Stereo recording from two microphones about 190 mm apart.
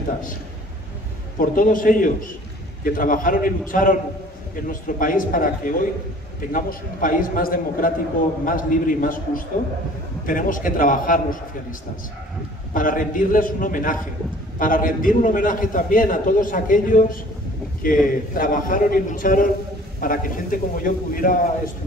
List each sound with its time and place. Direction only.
1.4 s a man's voice: 45° left (ahead or behind)
12.7 s a man's voice: 45° left (ahead or behind)